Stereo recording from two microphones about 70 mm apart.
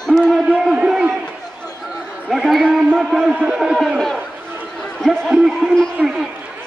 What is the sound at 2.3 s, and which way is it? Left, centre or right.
A man's voice, centre.